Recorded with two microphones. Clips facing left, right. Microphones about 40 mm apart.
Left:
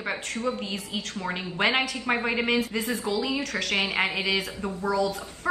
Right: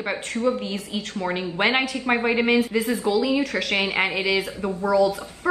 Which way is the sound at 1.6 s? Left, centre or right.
Centre.